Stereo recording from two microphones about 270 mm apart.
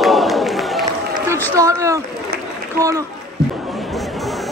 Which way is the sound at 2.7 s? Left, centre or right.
Centre.